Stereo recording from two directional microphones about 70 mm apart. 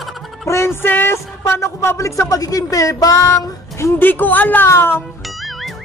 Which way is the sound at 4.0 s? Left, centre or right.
Left.